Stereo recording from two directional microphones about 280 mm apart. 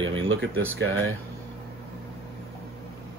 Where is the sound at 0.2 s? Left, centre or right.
Right.